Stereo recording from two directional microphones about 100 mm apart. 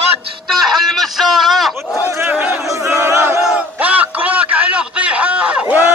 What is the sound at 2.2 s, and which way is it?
Battle cry, 15° right (ahead or behind).